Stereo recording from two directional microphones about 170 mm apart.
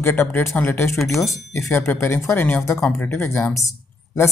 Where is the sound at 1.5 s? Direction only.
15° left (ahead or behind).